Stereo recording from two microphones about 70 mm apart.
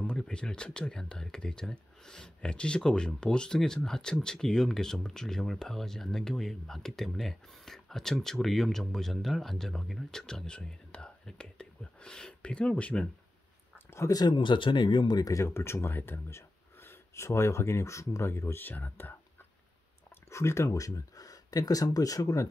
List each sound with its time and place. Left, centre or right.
0.0 s speech: centre
13.9 s speech: left
14.2 s speech: left
15.3 s speech: left
20.2 s speech: left